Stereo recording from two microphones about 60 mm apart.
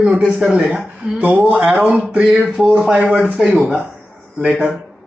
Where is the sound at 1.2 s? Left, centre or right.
Right.